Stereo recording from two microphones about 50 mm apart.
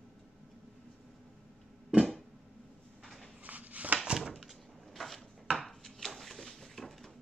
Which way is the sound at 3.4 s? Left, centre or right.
Right.